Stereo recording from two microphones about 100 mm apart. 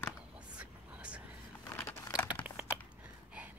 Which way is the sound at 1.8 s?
30° left (ahead or behind).